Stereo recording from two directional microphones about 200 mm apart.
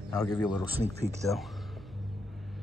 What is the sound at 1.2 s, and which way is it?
Music, centre (ahead or behind).